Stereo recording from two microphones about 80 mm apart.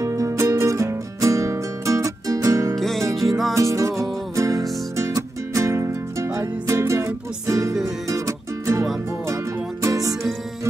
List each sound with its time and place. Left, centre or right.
0.0 s music: right
2.8 s music: centre
3.5 s music: right